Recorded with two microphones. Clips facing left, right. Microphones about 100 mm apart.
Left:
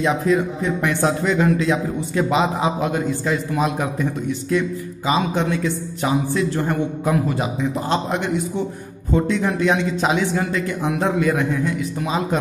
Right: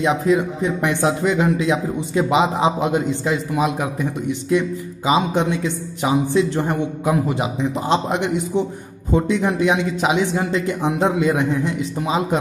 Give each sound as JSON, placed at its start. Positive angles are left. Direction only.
{"t": 0.0, "sound": "a man's voice", "side_deg": -15}